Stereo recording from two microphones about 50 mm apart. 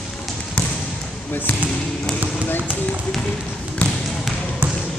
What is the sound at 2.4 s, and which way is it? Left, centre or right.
Basketball bounce, left.